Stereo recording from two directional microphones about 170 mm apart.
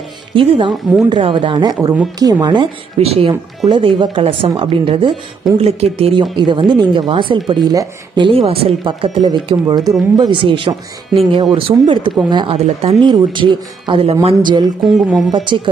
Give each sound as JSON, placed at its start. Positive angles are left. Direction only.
{"t": 0.3, "sound": "speech", "side_deg": -30}
{"t": 13.0, "sound": "speech", "side_deg": -25}
{"t": 14.9, "sound": "speech", "side_deg": 0}
{"t": 15.3, "sound": "speech", "side_deg": -30}